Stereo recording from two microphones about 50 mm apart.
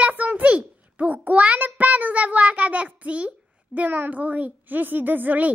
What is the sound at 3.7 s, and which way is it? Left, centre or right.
A child's voice, right.